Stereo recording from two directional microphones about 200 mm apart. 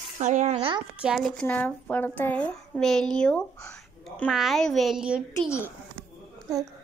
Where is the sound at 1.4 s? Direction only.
10° left (ahead or behind).